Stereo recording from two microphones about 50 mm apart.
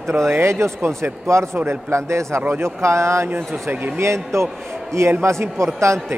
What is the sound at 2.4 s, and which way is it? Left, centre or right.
Speech, right.